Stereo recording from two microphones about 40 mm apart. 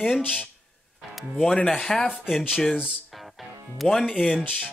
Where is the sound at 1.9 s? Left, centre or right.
Centre.